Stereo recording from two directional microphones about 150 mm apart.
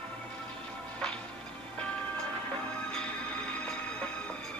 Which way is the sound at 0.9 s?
5° left (ahead or behind).